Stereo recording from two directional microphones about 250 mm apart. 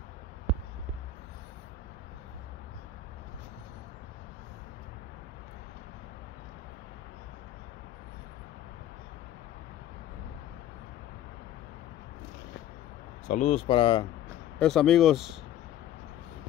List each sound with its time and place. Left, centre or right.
13.3 s speech: left
14.6 s speech: centre